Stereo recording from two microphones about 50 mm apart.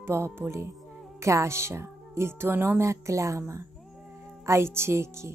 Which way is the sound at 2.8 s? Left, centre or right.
Right.